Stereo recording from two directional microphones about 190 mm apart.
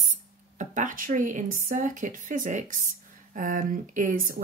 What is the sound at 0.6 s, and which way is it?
Speech, 40° right (ahead or behind).